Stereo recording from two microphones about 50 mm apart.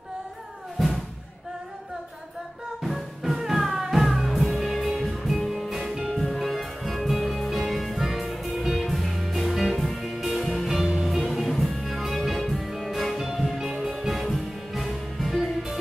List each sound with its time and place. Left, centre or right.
2.8 s music: centre